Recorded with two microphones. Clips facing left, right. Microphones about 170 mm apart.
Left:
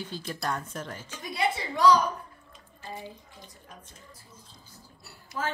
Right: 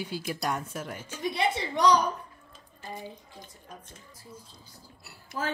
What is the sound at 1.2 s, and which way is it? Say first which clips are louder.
Speech: right 1 dB; 25° right (ahead or behind).